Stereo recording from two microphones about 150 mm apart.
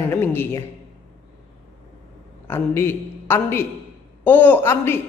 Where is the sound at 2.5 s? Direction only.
15° left (ahead or behind).